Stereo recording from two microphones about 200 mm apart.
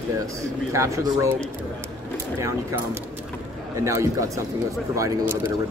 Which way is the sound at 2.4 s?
10° right (ahead or behind).